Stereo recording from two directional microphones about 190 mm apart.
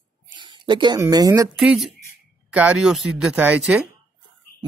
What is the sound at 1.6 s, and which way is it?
Speech, centre (ahead or behind).